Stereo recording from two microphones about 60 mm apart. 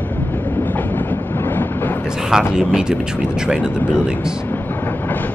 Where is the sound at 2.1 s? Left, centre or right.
Centre.